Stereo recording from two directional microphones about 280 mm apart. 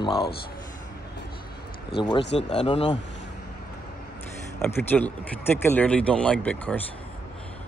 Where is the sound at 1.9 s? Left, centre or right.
Left.